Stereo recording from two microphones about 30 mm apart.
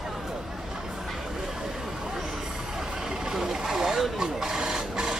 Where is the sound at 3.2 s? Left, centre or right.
Centre.